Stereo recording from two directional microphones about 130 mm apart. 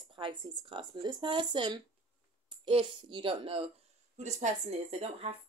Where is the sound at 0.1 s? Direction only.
40° right (ahead or behind).